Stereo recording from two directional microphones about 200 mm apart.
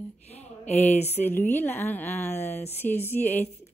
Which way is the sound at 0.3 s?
30° left (ahead or behind).